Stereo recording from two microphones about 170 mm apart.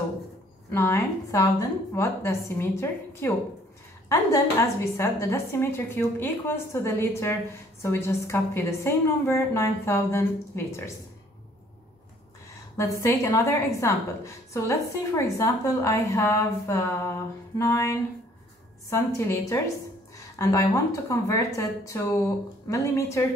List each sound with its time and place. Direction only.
0.7 s a woman's voice: 15° left (ahead or behind)
12.7 s a woman's voice: 15° left (ahead or behind)